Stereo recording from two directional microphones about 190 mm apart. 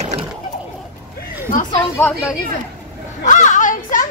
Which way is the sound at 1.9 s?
10° left (ahead or behind).